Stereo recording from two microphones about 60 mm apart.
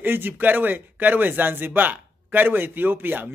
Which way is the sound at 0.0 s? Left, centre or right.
Right.